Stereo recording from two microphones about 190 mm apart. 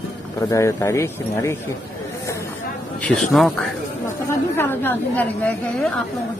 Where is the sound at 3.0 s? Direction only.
5° left (ahead or behind).